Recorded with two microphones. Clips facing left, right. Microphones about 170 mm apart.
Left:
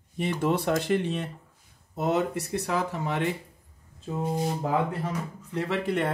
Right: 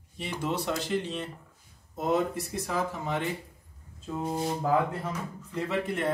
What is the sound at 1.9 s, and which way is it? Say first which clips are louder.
Speech: left 1 dB; 70° left (ahead or behind).